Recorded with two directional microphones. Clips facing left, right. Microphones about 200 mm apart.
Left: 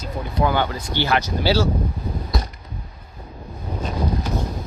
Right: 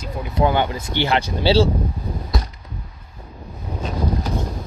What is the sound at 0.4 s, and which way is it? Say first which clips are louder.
Speech: right 2 dB; 20° right (ahead or behind).